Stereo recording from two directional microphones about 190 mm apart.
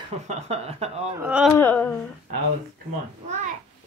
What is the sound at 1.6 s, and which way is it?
Speech, 10° left (ahead or behind).